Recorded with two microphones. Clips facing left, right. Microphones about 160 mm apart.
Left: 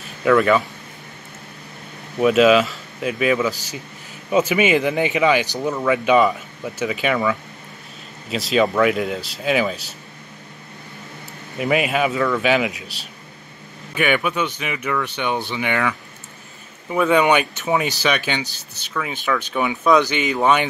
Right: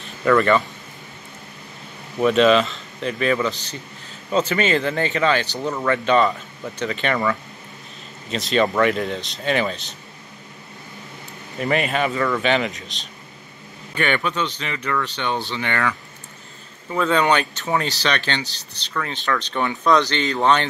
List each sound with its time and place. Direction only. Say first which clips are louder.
0.0 s speech: left 1 dB; 5° left (ahead or behind)
2.1 s speech: left 2 dB; 5° left (ahead or behind)
11.5 s speech: left 2 dB; 5° left (ahead or behind)
16.9 s speech: left 3 dB; 15° left (ahead or behind)